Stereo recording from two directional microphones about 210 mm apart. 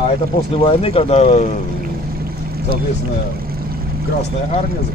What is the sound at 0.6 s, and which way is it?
Speech, 25° left (ahead or behind).